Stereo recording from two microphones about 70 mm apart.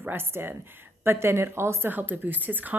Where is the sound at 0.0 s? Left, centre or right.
Right.